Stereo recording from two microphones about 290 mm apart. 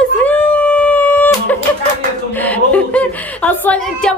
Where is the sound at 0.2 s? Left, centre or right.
Centre.